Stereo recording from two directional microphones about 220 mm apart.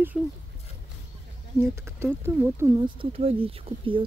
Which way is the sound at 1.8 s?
10° right (ahead or behind).